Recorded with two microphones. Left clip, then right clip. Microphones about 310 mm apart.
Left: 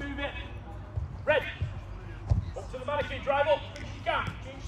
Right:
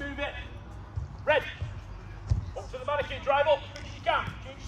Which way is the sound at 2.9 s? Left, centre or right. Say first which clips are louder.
Right 2 dB; centre.